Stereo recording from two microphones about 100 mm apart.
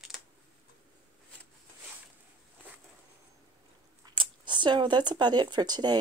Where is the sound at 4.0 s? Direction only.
50° right (ahead or behind).